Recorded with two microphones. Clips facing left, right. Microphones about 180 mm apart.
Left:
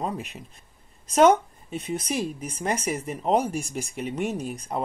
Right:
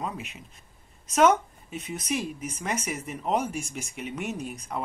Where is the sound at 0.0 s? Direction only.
35° left (ahead or behind).